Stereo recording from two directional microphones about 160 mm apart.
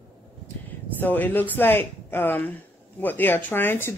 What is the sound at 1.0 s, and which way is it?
Speech, 10° left (ahead or behind).